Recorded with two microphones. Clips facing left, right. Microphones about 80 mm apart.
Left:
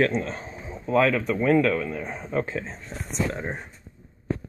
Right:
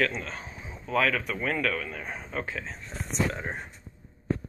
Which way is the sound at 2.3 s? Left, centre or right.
Left.